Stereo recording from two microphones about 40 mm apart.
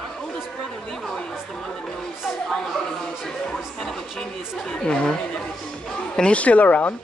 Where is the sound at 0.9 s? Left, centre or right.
Centre.